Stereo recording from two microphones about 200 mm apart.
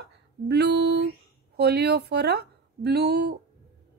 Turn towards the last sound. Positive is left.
turn(degrees=-55)  # may be behind; listen again after turning